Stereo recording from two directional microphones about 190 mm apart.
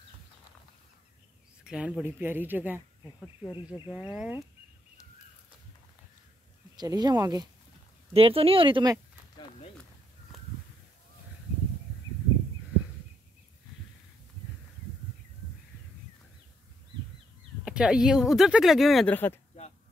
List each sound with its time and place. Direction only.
1.6 s speech: 5° right (ahead or behind)
3.4 s speech: 20° left (ahead or behind)
3.9 s speech: 5° right (ahead or behind)
6.8 s speech: 20° right (ahead or behind)
8.1 s speech: 30° right (ahead or behind)
17.6 s speech: 5° right (ahead or behind)